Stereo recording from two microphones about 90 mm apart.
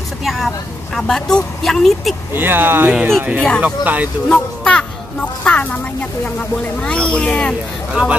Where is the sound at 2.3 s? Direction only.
25° right (ahead or behind).